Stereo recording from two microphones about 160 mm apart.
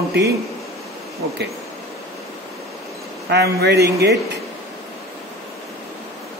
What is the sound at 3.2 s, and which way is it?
Speech, 85° right.